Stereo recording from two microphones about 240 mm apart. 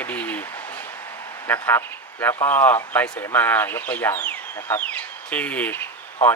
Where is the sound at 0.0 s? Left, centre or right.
Centre.